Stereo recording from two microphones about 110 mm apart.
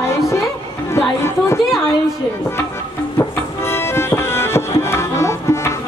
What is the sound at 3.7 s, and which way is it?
Music, 25° left (ahead or behind).